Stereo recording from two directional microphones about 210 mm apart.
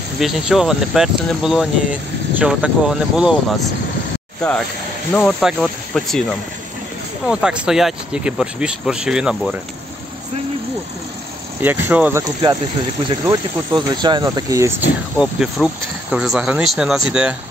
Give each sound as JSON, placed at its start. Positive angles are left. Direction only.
{"t": 0.2, "sound": "speech", "side_deg": 0}
{"t": 7.2, "sound": "speech", "side_deg": -5}
{"t": 11.6, "sound": "speech", "side_deg": -10}
{"t": 15.1, "sound": "speech", "side_deg": -5}